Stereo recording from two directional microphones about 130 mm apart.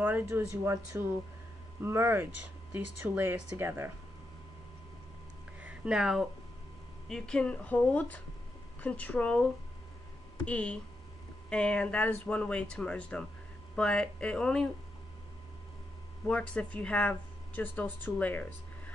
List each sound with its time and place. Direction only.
0.0 s speech: 15° right (ahead or behind)
5.6 s a sound: 5° right (ahead or behind)
7.1 s speech: 5° left (ahead or behind)
10.4 s speech: 10° left (ahead or behind)
16.3 s speech: 10° left (ahead or behind)